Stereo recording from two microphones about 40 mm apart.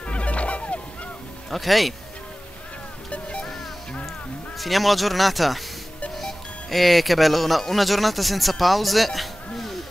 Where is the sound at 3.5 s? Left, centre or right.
Centre.